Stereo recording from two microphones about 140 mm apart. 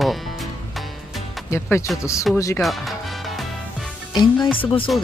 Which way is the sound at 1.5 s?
20° left (ahead or behind).